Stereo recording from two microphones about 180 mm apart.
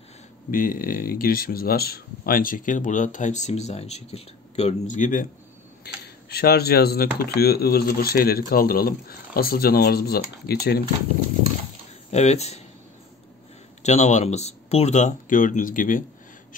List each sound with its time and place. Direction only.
0.5 s speech: 50° left (ahead or behind)
6.2 s speech: 60° left (ahead or behind)
12.1 s speech: 40° left (ahead or behind)
13.8 s speech: 40° left (ahead or behind)